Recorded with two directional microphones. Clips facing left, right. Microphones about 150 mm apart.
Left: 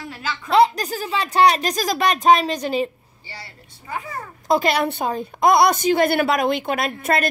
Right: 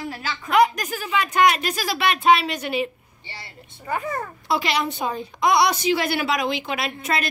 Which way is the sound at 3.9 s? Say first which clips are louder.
Right 4 dB; 55° right (ahead or behind).